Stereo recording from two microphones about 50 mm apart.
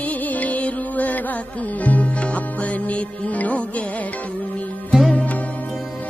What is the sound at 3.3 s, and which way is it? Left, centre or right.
Music, left.